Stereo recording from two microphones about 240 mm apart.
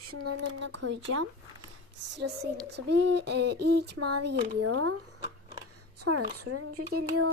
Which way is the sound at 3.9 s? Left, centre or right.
Right.